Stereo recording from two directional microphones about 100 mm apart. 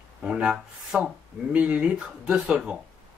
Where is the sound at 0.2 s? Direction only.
10° right (ahead or behind).